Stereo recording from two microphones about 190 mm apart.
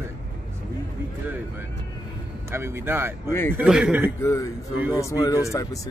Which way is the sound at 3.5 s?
5° right (ahead or behind).